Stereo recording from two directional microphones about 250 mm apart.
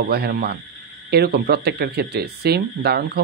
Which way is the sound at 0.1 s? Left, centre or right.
Right.